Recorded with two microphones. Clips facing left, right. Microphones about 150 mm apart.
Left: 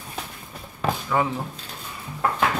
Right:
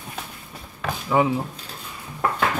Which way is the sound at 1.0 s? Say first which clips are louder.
Right 6 dB; 20° right (ahead or behind).